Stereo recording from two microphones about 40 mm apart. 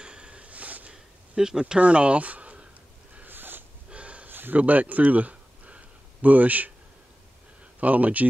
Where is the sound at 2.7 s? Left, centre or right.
Right.